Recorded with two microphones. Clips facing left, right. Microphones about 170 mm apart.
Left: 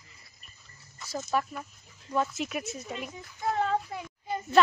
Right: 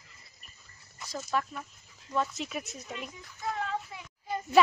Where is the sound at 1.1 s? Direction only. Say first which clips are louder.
Left 2 dB; 5° left (ahead or behind).